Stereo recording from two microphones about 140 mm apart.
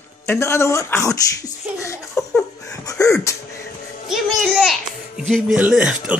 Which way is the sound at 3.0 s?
20° left (ahead or behind).